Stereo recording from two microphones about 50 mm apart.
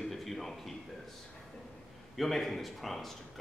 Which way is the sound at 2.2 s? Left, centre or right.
Centre.